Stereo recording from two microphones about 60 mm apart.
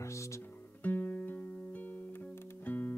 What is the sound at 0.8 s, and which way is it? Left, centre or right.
Music, left.